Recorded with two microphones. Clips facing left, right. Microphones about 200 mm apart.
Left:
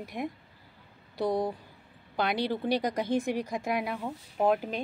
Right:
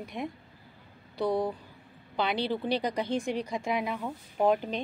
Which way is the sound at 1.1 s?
20° left (ahead or behind).